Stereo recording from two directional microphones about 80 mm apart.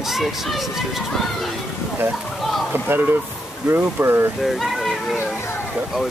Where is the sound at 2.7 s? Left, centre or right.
Right.